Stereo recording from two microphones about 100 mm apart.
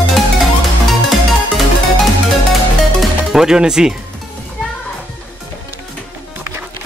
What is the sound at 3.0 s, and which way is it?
Music, centre (ahead or behind).